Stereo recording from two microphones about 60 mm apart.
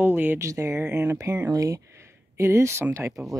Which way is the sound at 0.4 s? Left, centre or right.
Right.